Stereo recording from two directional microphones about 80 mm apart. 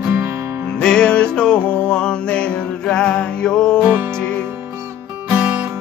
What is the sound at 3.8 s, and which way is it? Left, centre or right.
Music, centre.